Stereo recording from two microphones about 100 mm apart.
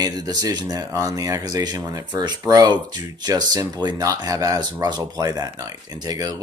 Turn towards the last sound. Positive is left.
turn(degrees=-40)  # may be behind; listen again after turning